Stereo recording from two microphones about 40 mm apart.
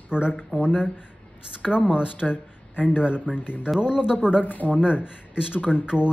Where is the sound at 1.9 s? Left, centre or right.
Right.